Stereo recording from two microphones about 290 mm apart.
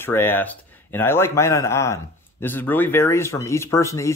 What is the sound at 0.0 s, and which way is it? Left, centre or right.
Speech, centre.